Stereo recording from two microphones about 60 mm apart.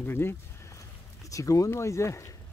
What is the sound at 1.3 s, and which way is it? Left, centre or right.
Speech, left.